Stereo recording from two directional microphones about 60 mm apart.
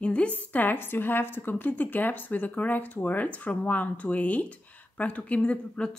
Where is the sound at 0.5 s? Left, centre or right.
Left.